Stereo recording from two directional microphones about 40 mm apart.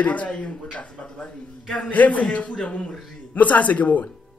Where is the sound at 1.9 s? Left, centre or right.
Left.